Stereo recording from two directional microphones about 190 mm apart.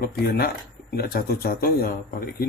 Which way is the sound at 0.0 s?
55° left (ahead or behind).